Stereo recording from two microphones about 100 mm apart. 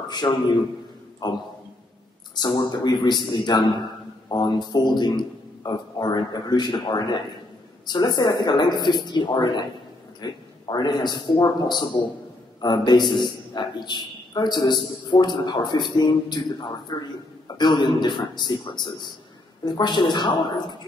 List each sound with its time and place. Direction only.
0.1 s a man's voice: 45° left (ahead or behind)
2.3 s a man's voice: 45° left (ahead or behind)